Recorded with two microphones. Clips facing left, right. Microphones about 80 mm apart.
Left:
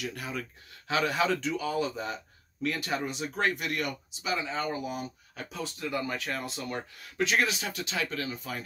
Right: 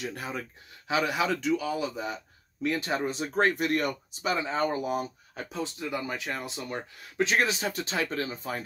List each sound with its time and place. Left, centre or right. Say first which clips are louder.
0.0 s speech: right 1 dB; right
0.8 s a man's voice: even; centre
2.6 s speech: right 3 dB; right
5.3 s speech: right 3 dB; right